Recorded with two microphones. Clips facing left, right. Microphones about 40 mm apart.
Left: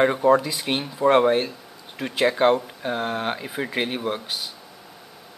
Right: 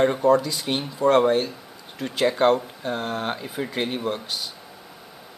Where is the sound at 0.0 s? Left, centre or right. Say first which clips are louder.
Left 1 dB; centre.